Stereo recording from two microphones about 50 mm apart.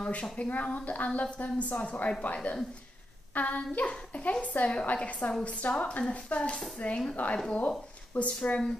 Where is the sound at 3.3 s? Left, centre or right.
Left.